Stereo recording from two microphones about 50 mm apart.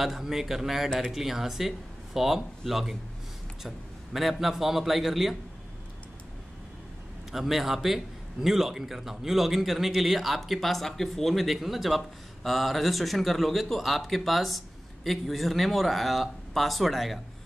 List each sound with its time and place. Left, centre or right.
0.0 s a man's voice: centre
7.3 s a man's voice: centre